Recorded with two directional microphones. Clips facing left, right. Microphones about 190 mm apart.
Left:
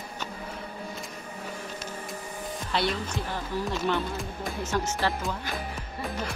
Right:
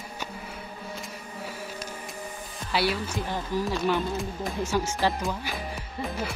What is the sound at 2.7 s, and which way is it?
A woman's voice, 5° right (ahead or behind).